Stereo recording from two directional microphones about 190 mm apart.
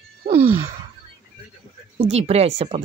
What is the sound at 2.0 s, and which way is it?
Speech, 35° right (ahead or behind).